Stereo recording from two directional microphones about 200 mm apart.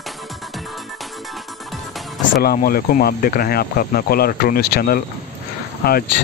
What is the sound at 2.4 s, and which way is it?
Speech, 50° left (ahead or behind).